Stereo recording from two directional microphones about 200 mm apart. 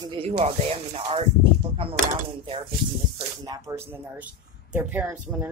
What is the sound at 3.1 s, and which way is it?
Speech, 20° right (ahead or behind).